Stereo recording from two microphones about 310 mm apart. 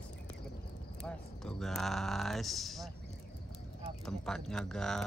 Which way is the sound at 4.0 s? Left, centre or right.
Centre.